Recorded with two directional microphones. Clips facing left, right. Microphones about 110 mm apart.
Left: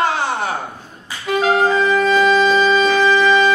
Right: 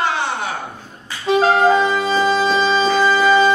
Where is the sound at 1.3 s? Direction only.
30° right (ahead or behind).